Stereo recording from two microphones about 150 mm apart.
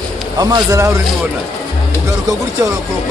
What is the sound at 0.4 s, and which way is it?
Speech, 25° right (ahead or behind).